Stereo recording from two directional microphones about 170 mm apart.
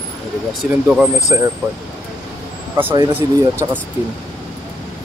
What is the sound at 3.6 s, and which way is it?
Speech, 25° right (ahead or behind).